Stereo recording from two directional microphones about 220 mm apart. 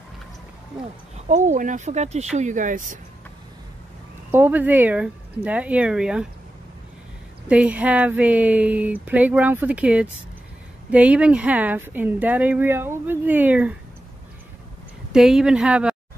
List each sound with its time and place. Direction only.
1.3 s speech: 35° right (ahead or behind)
4.3 s speech: 10° right (ahead or behind)
7.4 s speech: 5° right (ahead or behind)
15.1 s speech: centre (ahead or behind)